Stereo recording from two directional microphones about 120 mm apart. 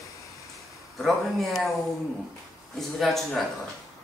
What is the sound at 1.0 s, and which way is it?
Speech, centre (ahead or behind).